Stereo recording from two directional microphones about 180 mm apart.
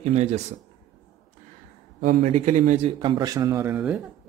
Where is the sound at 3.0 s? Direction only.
25° right (ahead or behind).